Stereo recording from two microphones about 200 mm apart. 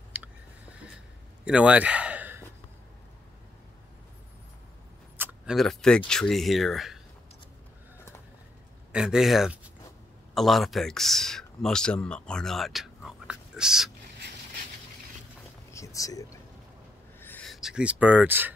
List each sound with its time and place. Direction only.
0.1 s a sound: 5° right (ahead or behind)
5.1 s speech: 5° right (ahead or behind)
8.9 s speech: 5° right (ahead or behind)
15.7 s whispering: 15° left (ahead or behind)
17.2 s speech: 5° left (ahead or behind); by 18.5 s 10° right (ahead or behind)